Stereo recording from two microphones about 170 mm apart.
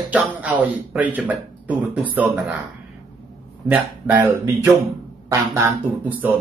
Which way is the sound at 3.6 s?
10° right (ahead or behind).